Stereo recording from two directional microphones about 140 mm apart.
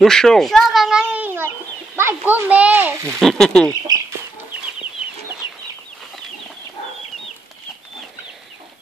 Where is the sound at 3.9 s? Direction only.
25° right (ahead or behind).